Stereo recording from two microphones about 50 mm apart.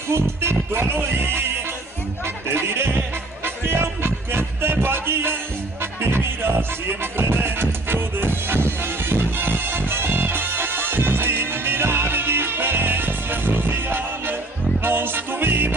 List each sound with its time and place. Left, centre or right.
0.1 s music: right
2.4 s speech: right
3.4 s music: right